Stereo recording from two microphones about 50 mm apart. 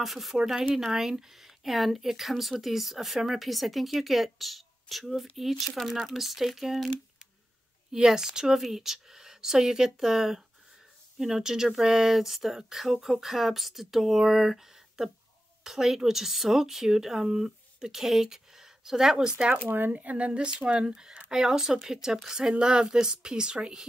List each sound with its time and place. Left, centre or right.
0.0 s speech: centre
7.9 s speech: centre
19.7 s speech: right; by 23.9 s centre